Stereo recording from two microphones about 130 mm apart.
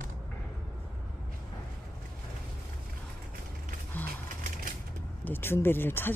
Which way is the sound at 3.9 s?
15° left (ahead or behind).